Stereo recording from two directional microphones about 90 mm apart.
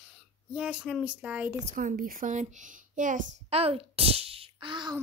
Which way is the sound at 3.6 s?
90° right.